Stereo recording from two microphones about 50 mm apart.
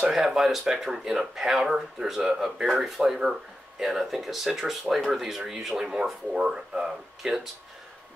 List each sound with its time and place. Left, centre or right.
0.1 s speech: centre